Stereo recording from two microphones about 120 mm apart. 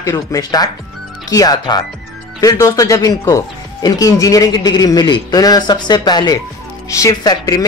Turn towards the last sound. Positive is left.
turn(degrees=35)  # may be behind; listen again after turning